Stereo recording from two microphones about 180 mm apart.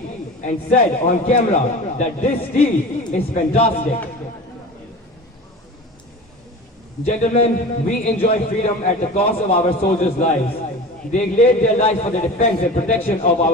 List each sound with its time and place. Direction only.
0.4 s a man's voice: 40° left (ahead or behind)
7.1 s a man's voice: 40° left (ahead or behind)